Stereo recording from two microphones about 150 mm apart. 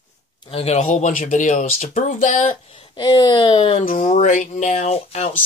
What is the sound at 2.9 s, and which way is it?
Speech, 30° left (ahead or behind).